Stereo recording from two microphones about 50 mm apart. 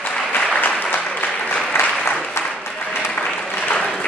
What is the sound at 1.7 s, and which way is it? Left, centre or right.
Applause, left.